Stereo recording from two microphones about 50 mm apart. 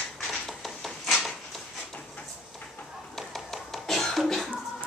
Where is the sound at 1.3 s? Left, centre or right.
Centre.